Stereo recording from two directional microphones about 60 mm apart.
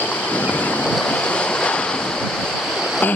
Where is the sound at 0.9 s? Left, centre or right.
Centre.